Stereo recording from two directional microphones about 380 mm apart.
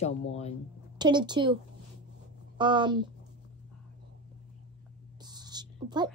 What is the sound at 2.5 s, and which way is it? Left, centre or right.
Speech, centre.